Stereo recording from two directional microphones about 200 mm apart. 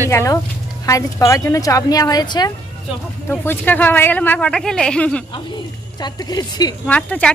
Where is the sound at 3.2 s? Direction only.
10° left (ahead or behind).